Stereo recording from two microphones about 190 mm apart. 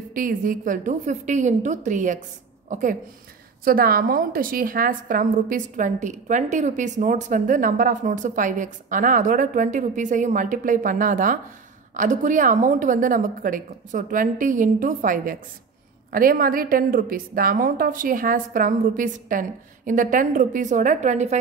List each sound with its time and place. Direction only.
0.1 s a woman's voice: 45° right (ahead or behind)